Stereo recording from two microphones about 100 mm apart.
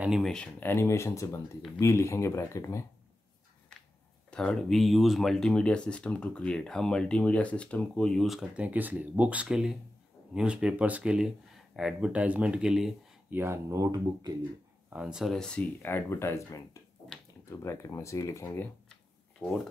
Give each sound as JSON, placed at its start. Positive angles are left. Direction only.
{"t": 0.2, "sound": "speech", "side_deg": 5}
{"t": 0.6, "sound": "speech", "side_deg": 25}
{"t": 4.3, "sound": "speech", "side_deg": 5}
{"t": 8.3, "sound": "speech", "side_deg": -5}
{"t": 8.6, "sound": "speech", "side_deg": -15}
{"t": 13.3, "sound": "speech", "side_deg": -20}
{"t": 13.7, "sound": "speech", "side_deg": -35}
{"t": 14.9, "sound": "speech", "side_deg": -10}
{"t": 15.3, "sound": "speech", "side_deg": 10}
{"t": 15.8, "sound": "speech", "side_deg": 25}